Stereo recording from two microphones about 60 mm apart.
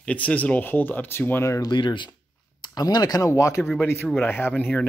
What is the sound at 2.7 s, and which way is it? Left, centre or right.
Speech, left.